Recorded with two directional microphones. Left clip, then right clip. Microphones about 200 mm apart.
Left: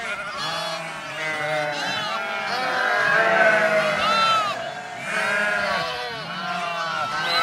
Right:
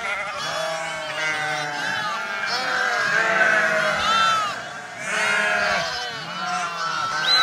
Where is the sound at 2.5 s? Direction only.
45° left (ahead or behind).